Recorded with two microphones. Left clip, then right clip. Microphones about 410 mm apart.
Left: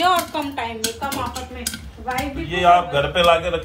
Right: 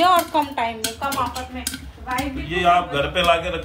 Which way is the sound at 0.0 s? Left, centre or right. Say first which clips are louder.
Right 2 dB; right.